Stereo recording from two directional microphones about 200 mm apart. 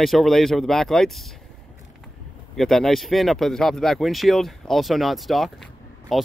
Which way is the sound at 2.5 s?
Centre (ahead or behind).